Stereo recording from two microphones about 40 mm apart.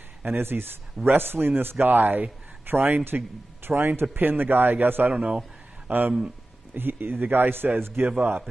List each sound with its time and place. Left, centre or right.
0.2 s a man's voice: right
4.2 s a man's voice: right
5.1 s speech: right
5.9 s speech: right
6.7 s a man's voice: right